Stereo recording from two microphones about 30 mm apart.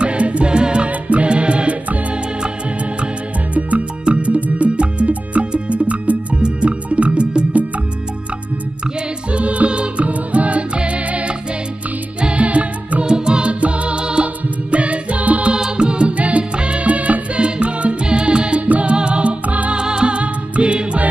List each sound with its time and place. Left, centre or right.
0.0 s music: right
0.8 s music: right
4.0 s music: right
9.3 s music: right
12.2 s music: right
12.4 s music: right
13.0 s music: right
15.6 s music: right
16.2 s music: right
17.4 s music: right
18.0 s music: right
18.7 s music: right
19.4 s music: right
19.7 s music: right